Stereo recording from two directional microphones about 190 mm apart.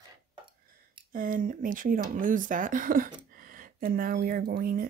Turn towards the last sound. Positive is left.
turn(degrees=-50)  # may be behind; listen again after turning